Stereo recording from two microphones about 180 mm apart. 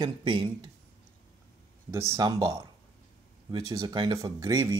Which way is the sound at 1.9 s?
15° right (ahead or behind).